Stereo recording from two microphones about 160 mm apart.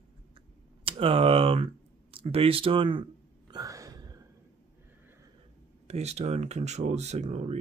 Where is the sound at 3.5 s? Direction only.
20° right (ahead or behind).